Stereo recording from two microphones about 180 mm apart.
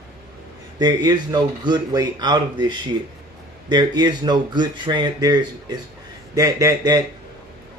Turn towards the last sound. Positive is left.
turn(degrees=-20)  # may be behind; listen again after turning